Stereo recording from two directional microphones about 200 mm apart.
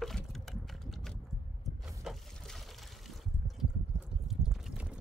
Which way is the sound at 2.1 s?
Centre (ahead or behind).